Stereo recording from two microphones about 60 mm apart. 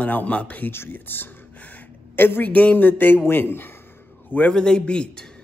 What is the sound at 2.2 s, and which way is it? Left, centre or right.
Speech, left.